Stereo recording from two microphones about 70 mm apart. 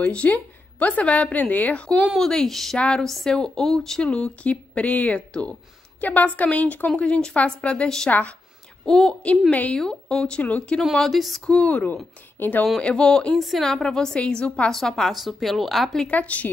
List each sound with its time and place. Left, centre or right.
0.0 s speech: centre
2.1 s a woman's voice: centre; by 8.4 s left
8.8 s a woman's voice: centre
9.5 s speech: left
9.8 s a woman's voice: centre
10.8 s a woman's voice: centre
11.4 s speech: centre
12.8 s a woman's voice: centre
13.4 s a woman's voice: centre
16.1 s speech: left